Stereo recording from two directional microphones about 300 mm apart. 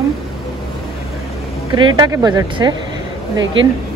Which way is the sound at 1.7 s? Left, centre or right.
Centre.